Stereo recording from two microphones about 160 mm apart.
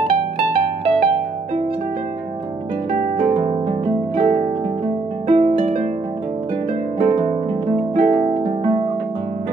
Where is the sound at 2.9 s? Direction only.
60° right (ahead or behind).